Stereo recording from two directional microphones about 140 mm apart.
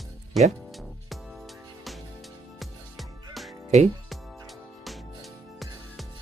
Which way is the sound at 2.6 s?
Centre (ahead or behind).